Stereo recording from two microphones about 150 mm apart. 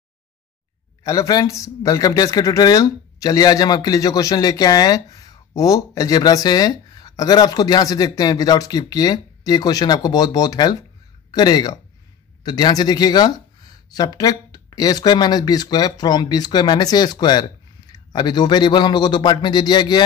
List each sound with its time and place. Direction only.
1.0 s a man's voice: 20° left (ahead or behind)